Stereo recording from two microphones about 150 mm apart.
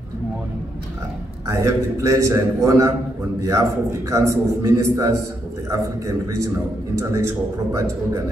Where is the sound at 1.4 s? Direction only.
20° right (ahead or behind).